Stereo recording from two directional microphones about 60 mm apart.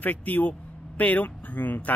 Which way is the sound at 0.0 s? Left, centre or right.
Left.